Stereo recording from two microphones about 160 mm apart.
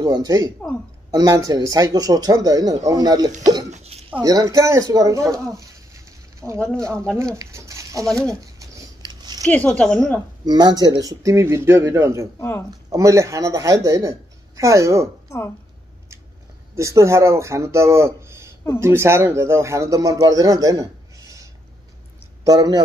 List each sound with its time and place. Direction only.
0.0 s speech: 25° right (ahead or behind)
3.7 s hiccup: 40° right (ahead or behind)
4.2 s speech: 20° right (ahead or behind)
7.3 s a sound: 20° right (ahead or behind)
9.5 s speech: 10° left (ahead or behind)
10.4 s speech: 25° right (ahead or behind)
12.4 s speech: 15° left (ahead or behind)
12.9 s speech: 20° right (ahead or behind)
15.2 s a woman's voice: 15° left (ahead or behind)
16.7 s speech: 20° right (ahead or behind)